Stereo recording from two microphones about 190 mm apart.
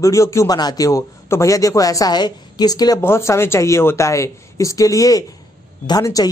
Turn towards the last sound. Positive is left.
turn(degrees=20)  # may be behind; listen again after turning